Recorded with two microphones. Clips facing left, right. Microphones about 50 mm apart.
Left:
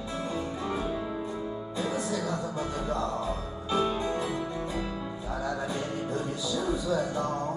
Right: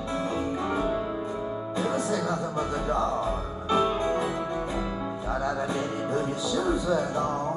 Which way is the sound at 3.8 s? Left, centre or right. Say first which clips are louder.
Right 2 dB; right.